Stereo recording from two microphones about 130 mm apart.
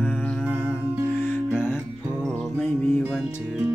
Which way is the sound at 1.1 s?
15° left (ahead or behind).